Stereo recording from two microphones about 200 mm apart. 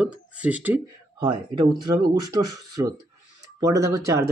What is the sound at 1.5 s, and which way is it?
Speech, 20° right (ahead or behind).